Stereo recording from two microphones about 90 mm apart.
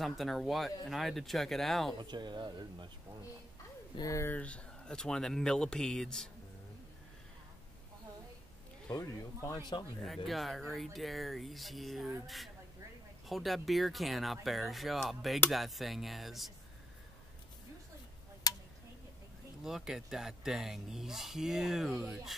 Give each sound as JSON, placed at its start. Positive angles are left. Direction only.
{"t": 0.0, "sound": "speech", "side_deg": 0}
{"t": 2.0, "sound": "speech", "side_deg": -55}
{"t": 4.0, "sound": "speech", "side_deg": 35}
{"t": 4.3, "sound": "speech", "side_deg": 15}
{"t": 8.9, "sound": "speech", "side_deg": 35}
{"t": 9.6, "sound": "speech", "side_deg": 55}
{"t": 10.0, "sound": "speech", "side_deg": 0}
{"t": 13.3, "sound": "speech", "side_deg": 0}
{"t": 18.4, "sound": "tick-tock", "side_deg": 45}
{"t": 19.6, "sound": "speech", "side_deg": -5}